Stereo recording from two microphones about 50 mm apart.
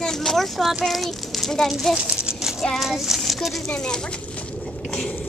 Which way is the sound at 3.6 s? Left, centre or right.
Centre.